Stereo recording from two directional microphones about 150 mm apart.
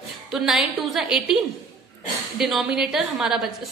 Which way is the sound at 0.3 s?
Centre (ahead or behind).